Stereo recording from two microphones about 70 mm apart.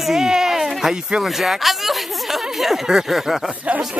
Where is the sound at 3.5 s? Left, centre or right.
Centre.